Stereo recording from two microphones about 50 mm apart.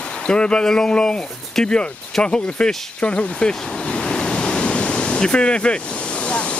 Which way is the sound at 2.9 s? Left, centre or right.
Left.